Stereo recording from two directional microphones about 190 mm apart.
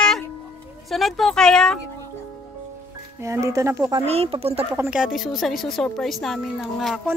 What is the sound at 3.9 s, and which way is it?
Speech, 30° right (ahead or behind).